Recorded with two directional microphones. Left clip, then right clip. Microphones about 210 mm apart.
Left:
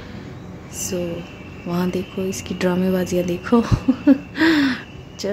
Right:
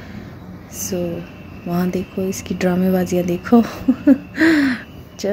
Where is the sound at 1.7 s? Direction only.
10° right (ahead or behind).